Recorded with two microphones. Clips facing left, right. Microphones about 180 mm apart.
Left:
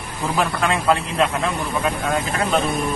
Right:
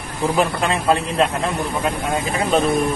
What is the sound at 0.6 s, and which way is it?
Speech, 30° right (ahead or behind).